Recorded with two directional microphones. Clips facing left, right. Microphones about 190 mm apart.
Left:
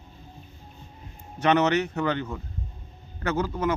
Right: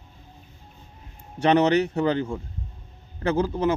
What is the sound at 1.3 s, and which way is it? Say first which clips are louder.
A man's voice: right 3 dB; 30° right (ahead or behind).